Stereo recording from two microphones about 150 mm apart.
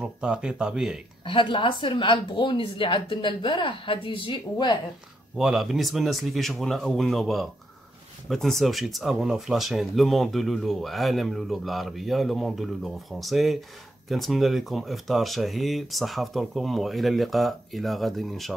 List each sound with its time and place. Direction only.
0.2 s speech: 5° right (ahead or behind)
1.2 s speech: 35° left (ahead or behind)
5.4 s speech: centre (ahead or behind)